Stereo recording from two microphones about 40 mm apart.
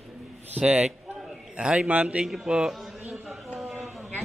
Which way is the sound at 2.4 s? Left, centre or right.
Centre.